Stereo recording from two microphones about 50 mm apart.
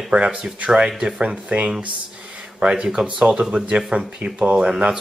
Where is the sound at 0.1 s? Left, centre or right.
Right.